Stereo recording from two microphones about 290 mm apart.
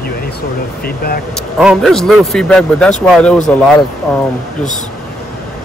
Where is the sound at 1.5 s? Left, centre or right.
Centre.